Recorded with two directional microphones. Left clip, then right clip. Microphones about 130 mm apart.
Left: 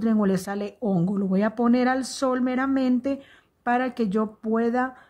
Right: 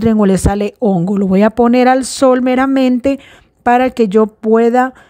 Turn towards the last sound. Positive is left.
turn(degrees=-70)  # may be behind; listen again after turning